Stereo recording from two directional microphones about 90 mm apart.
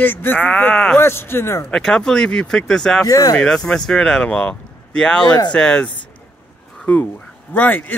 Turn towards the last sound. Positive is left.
turn(degrees=20)  # may be behind; listen again after turning